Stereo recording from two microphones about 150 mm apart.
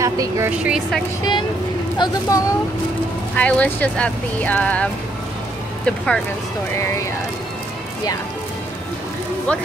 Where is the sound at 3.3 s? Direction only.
10° left (ahead or behind).